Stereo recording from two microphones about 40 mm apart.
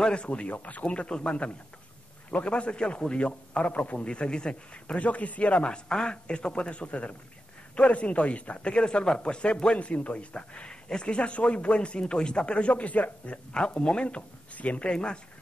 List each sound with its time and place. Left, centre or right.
0.0 s speech: left
5.5 s speech: left
14.0 s speech: left